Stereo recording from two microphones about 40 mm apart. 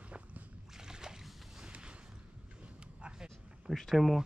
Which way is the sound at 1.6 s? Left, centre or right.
Right.